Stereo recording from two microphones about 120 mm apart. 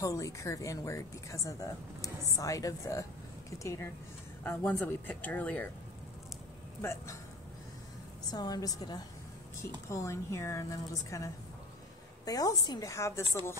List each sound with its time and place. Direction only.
0.0 s speech: 25° left (ahead or behind)
6.8 s speech: 20° left (ahead or behind)
8.3 s a woman's voice: 35° left (ahead or behind)